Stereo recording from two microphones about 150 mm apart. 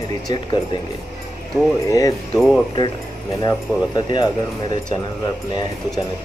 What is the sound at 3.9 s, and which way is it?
Speech, 30° left (ahead or behind).